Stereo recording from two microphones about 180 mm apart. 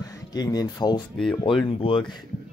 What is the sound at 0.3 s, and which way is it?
A man's voice, 20° left (ahead or behind).